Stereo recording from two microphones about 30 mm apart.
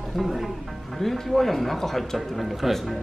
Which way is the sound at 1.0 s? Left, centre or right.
Centre.